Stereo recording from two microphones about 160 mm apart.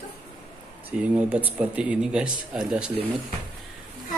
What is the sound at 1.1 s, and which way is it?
A man's voice, 10° right (ahead or behind).